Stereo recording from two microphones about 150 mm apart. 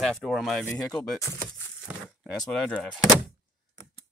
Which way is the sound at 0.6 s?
20° left (ahead or behind).